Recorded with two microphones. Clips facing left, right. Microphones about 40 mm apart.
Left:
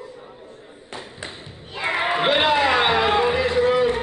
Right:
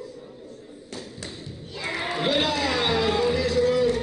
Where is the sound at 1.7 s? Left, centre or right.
Left.